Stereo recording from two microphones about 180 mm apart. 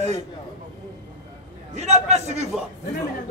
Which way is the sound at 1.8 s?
40° right (ahead or behind).